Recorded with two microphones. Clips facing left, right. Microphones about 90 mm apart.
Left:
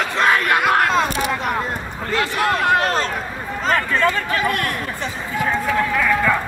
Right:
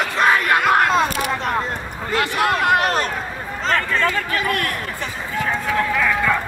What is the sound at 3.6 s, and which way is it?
Run, 10° left (ahead or behind).